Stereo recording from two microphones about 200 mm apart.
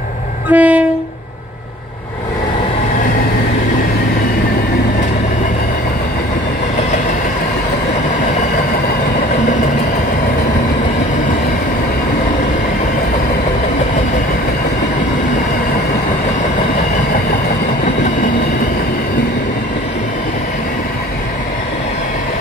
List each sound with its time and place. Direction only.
0.5 s train: 5° right (ahead or behind)